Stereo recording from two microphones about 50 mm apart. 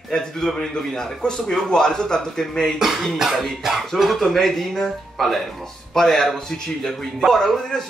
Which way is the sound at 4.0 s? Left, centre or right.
Centre.